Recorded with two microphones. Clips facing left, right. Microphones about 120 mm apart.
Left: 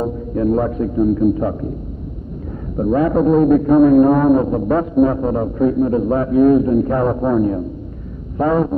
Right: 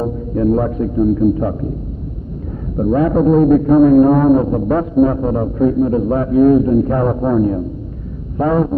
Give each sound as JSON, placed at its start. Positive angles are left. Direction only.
{"t": 0.6, "sound": "a man's voice", "side_deg": 0}
{"t": 2.8, "sound": "a man's voice", "side_deg": -5}